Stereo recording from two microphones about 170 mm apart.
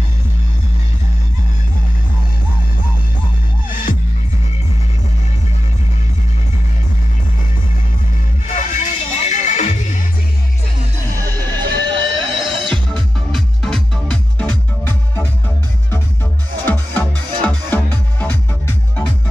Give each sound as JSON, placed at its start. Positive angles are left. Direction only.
{"t": 8.5, "sound": "music", "side_deg": 45}
{"t": 11.3, "sound": "neigh", "side_deg": 15}
{"t": 11.6, "sound": "a sound", "side_deg": -25}
{"t": 12.6, "sound": "music", "side_deg": 5}
{"t": 16.6, "sound": "music", "side_deg": 10}